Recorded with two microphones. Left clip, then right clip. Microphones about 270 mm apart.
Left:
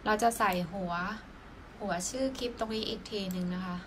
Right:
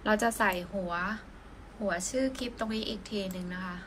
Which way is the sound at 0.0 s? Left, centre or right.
Centre.